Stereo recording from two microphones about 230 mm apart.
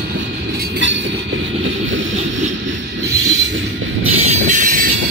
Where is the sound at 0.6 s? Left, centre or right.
Right.